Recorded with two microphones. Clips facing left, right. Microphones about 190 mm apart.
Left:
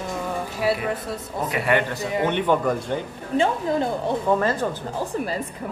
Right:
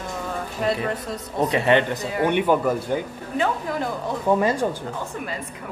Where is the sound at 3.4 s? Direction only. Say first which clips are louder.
Left 3 dB; 25° left (ahead or behind).